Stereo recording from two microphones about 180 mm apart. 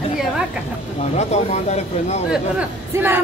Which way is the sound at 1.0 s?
40° left (ahead or behind).